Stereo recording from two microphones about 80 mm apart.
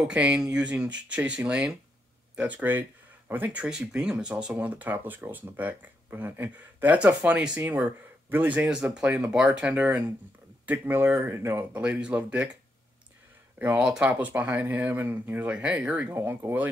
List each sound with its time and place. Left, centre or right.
0.0 s speech: centre
3.5 s speech: centre
8.9 s speech: centre; by 11.6 s right
11.7 s speech: centre
13.7 s speech: centre
14.0 s speech: right
15.5 s speech: centre
16.2 s speech: right